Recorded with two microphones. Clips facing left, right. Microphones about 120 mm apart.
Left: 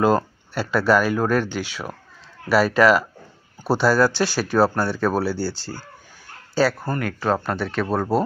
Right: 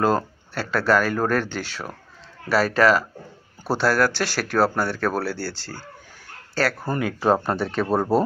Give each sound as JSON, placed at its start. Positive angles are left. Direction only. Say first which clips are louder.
{"t": 0.0, "sound": "speech", "louder": "left 2 dB", "side_deg": 15}
{"t": 6.8, "sound": "speech", "louder": "right 1 dB", "side_deg": -15}